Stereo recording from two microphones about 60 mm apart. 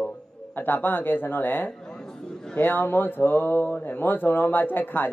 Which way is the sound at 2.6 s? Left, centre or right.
Left.